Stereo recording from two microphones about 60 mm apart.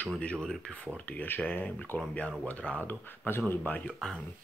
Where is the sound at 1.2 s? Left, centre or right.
Left.